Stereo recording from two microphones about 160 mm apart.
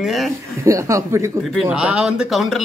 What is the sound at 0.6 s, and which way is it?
Speech, 20° right (ahead or behind).